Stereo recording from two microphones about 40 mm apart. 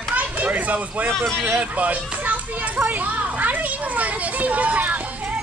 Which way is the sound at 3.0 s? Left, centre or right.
Right.